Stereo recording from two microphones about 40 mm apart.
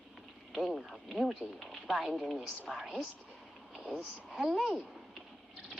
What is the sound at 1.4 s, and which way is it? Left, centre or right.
Speech, right.